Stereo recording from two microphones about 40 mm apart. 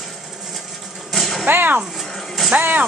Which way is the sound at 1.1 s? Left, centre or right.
Centre.